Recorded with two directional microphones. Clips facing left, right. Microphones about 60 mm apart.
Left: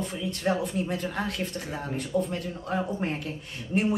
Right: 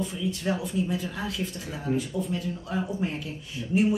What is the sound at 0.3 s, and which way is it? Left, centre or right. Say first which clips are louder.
Speech: left 5 dB; left.